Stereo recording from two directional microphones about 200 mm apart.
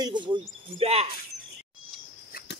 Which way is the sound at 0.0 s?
25° right (ahead or behind).